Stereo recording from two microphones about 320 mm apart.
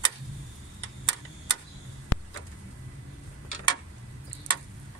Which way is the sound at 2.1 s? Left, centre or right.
Left.